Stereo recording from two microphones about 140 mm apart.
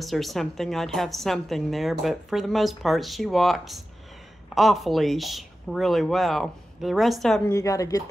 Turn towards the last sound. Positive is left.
turn(degrees=25)  # may be behind; listen again after turning